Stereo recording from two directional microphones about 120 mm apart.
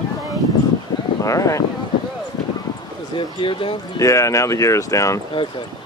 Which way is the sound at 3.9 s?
25° left (ahead or behind).